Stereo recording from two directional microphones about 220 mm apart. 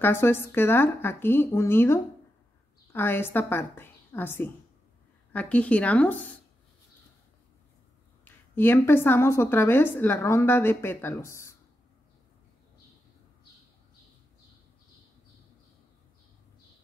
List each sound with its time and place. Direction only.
0.0 s a woman's voice: 10° left (ahead or behind)
8.5 s a woman's voice: 10° left (ahead or behind)